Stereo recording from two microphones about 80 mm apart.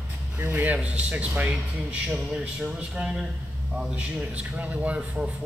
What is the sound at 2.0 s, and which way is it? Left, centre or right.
A man's voice, centre.